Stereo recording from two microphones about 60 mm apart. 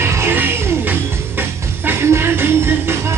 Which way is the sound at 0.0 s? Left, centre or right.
Right.